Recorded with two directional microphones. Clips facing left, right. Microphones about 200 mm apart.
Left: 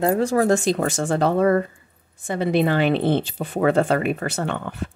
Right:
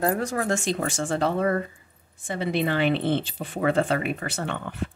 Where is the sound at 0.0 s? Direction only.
25° left (ahead or behind).